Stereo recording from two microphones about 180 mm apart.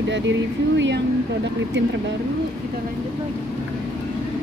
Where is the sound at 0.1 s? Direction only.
85° right.